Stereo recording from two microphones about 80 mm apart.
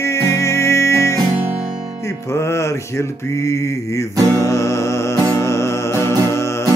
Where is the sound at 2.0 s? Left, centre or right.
Left.